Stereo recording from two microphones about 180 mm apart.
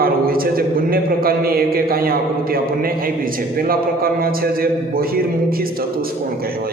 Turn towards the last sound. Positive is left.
turn(degrees=-55)  # may be behind; listen again after turning